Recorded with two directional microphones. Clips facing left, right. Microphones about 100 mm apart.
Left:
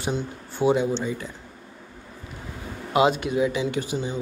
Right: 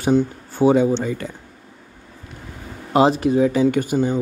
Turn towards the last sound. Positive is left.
turn(degrees=-45)  # may be behind; listen again after turning